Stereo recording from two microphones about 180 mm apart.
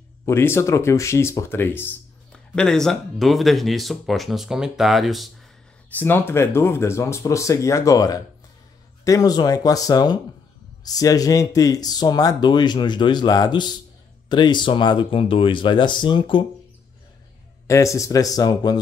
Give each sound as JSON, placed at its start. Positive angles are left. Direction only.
{"t": 0.2, "sound": "speech", "side_deg": 15}
{"t": 5.9, "sound": "speech", "side_deg": 10}
{"t": 17.6, "sound": "speech", "side_deg": 15}